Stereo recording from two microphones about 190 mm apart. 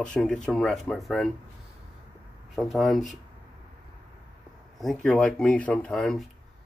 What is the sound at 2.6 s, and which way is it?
Speech, centre (ahead or behind).